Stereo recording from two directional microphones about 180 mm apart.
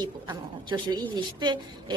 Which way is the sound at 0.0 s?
25° right (ahead or behind).